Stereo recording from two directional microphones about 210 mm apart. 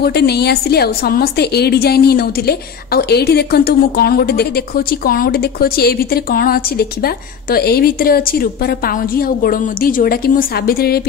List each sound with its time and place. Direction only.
0.0 s a woman's voice: 50° left (ahead or behind)